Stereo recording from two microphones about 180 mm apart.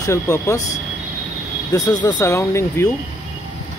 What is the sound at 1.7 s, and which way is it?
Speech, 20° left (ahead or behind).